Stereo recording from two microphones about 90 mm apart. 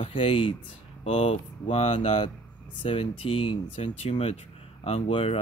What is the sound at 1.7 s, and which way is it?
Speech, 90° left.